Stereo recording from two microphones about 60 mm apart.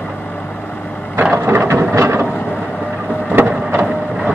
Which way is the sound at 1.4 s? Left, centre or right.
Right.